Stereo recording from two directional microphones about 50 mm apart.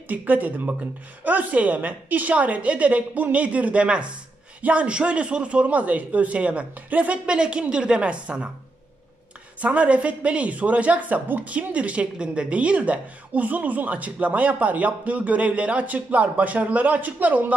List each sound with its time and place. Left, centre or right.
0.1 s a woman's voice: right
7.3 s a woman's voice: centre
9.6 s a woman's voice: right